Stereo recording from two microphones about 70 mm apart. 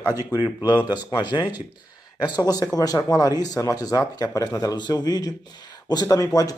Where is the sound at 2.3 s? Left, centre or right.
Left.